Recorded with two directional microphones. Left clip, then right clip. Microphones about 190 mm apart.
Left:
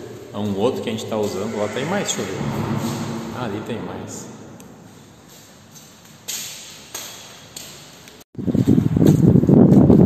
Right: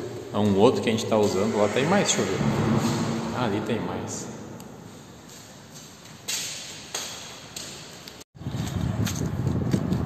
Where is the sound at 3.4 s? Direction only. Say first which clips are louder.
Right 1 dB; centre (ahead or behind).